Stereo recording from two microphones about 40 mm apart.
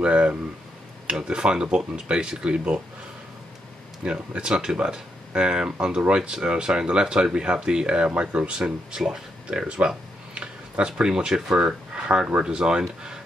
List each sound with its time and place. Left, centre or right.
0.0 s speech: right
1.0 s speech: centre
4.0 s speech: right
8.6 s speech: right
9.5 s speech: right
11.0 s speech: centre